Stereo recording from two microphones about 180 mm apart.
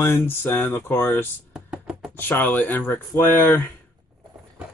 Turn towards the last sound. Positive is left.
turn(degrees=10)  # may be behind; listen again after turning